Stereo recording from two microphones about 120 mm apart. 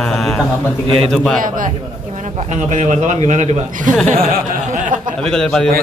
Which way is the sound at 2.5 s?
75° right (ahead or behind).